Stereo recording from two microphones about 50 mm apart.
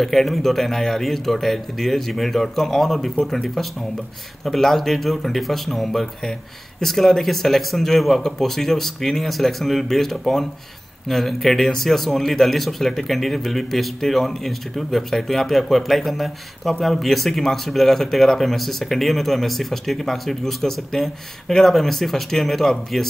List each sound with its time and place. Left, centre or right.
0.0 s speech: centre